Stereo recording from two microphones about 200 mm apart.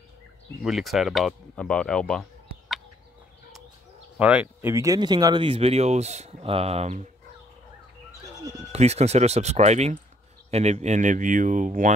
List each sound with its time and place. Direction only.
0.7 s speech: centre (ahead or behind)
4.2 s speech: 5° right (ahead or behind); by 7.1 s 35° right (ahead or behind)
8.7 s speech: 30° right (ahead or behind)